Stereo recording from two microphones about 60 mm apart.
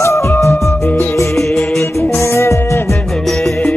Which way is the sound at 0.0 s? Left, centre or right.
Left.